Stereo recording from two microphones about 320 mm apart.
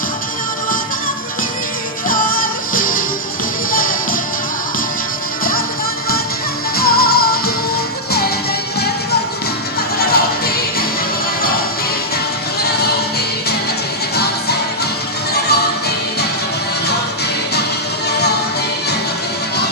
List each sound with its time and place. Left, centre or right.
2.0 s music: left
6.8 s music: left
9.9 s music: left
12.6 s music: left
14.1 s music: left